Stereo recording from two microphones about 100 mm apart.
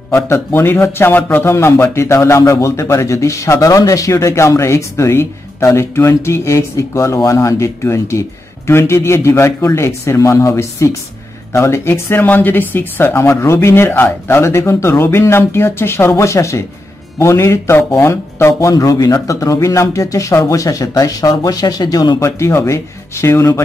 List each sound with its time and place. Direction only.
0.1 s a man's voice: 25° left (ahead or behind); by 22.2 s 45° left (ahead or behind)
22.2 s a man's voice: 30° left (ahead or behind)